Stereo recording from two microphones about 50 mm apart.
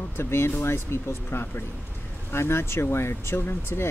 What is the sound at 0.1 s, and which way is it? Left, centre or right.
Speech, left.